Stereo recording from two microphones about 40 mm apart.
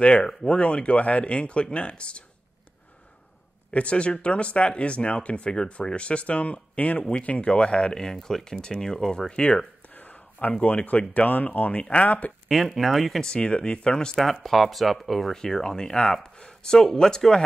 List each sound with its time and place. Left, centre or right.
0.2 s speech: centre
0.5 s speech: left
3.7 s speech: left
7.9 s speech: centre
9.9 s a sound: left
10.9 s speech: left
11.7 s speech: left
12.4 s speech: centre
13.2 s speech: left
14.1 s speech: centre
15.3 s speech: centre